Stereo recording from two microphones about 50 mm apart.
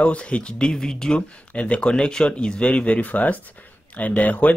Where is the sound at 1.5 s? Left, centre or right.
Left.